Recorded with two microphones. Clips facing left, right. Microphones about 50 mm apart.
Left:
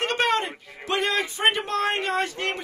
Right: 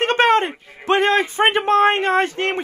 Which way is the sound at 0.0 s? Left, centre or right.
Right.